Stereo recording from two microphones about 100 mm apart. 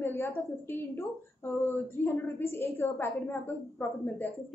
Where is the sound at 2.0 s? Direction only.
20° left (ahead or behind).